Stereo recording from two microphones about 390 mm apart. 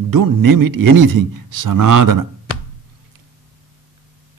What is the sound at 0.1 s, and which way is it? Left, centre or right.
Speech, right.